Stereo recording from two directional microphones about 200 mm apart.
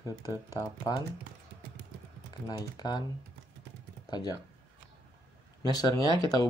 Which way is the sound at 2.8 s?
20° left (ahead or behind).